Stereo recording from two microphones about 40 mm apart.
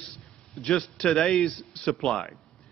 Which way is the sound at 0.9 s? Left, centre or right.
Centre.